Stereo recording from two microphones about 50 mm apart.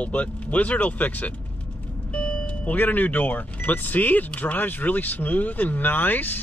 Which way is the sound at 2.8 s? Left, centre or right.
Left.